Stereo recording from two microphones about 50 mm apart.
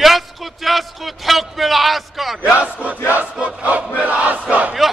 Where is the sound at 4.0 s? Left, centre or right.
Right.